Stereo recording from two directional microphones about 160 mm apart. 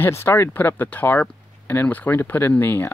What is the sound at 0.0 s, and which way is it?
Speech, 15° left (ahead or behind).